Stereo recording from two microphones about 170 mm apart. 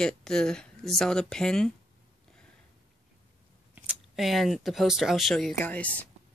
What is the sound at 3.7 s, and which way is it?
A woman's voice, 5° right (ahead or behind).